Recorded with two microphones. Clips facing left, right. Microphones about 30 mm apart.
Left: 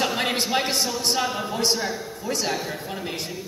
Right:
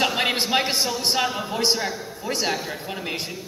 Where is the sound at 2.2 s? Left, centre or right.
Right.